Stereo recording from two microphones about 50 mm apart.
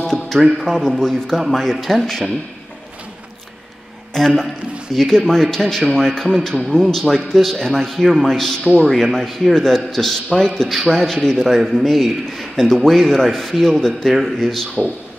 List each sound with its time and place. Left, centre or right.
0.0 s music: centre
0.4 s a man's voice: centre
4.1 s a man's voice: centre